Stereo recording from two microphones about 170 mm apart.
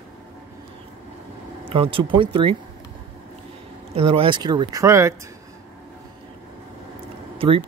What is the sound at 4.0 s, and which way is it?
Speech, 35° right (ahead or behind).